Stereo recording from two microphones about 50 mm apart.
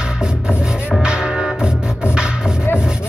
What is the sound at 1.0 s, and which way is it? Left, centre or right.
Music, centre.